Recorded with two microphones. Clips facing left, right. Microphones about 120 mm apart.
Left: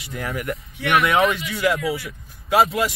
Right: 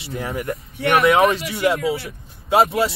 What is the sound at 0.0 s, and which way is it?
Speech, 25° right (ahead or behind).